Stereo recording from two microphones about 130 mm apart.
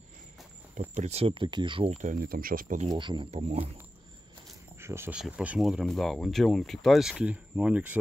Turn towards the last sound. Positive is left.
turn(degrees=-10)  # may be behind; listen again after turning